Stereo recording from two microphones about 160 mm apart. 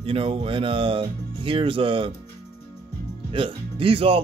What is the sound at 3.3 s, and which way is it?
Speech, 35° right (ahead or behind).